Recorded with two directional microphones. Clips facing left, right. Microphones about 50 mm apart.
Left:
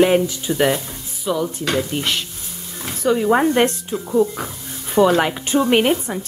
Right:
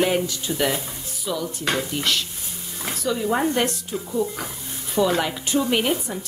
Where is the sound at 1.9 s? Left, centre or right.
Left.